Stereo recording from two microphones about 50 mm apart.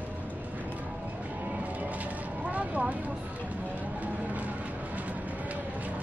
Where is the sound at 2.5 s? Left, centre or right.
Right.